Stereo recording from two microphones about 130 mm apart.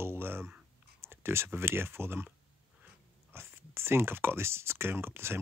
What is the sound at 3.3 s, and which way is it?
Speech, 20° right (ahead or behind).